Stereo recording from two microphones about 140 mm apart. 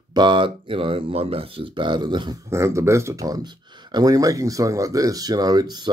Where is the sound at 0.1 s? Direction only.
35° right (ahead or behind).